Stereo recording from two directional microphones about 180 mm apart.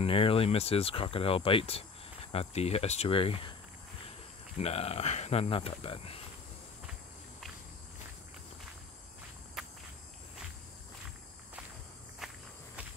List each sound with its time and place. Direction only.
0.0 s speech: 30° left (ahead or behind)
4.6 s speech: 35° left (ahead or behind)
12.2 s walk: centre (ahead or behind)